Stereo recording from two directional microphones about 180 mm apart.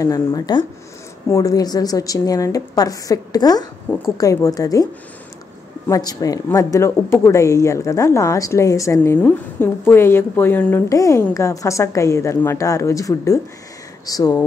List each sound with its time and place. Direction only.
0.0 s a woman's voice: 20° left (ahead or behind)
3.9 s speech: 10° left (ahead or behind)
4.2 s a woman's voice: 20° left (ahead or behind)
5.9 s a woman's voice: 20° left (ahead or behind)